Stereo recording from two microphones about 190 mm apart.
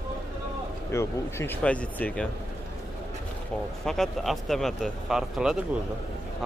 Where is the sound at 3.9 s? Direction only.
Centre (ahead or behind).